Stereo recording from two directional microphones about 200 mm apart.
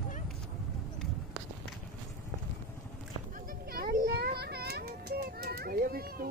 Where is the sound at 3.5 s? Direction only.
50° right (ahead or behind).